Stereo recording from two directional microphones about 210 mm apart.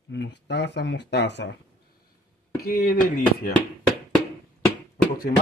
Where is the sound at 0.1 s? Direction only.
55° left (ahead or behind).